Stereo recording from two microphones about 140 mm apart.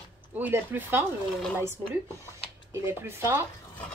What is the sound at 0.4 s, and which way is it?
Speech, 15° right (ahead or behind).